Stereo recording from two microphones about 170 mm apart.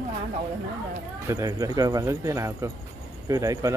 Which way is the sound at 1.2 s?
20° right (ahead or behind).